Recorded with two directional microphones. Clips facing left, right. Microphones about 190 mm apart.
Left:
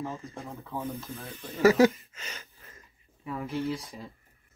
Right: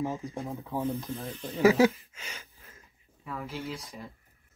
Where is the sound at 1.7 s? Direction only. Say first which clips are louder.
Left 2 dB; 5° right (ahead or behind).